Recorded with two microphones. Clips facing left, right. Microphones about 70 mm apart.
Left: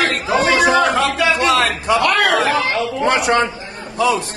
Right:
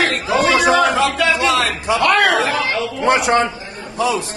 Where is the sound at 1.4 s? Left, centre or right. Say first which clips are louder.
Left 1 dB; left.